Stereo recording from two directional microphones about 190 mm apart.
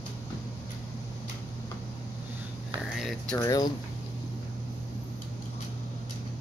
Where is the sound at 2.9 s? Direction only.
Centre (ahead or behind).